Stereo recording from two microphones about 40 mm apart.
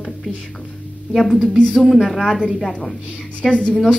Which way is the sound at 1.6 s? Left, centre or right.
Centre.